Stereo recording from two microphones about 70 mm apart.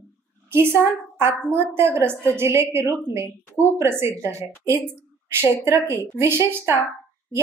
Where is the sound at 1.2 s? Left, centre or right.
Right.